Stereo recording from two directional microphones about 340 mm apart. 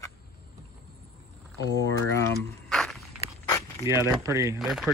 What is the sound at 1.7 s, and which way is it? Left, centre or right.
Speech, centre.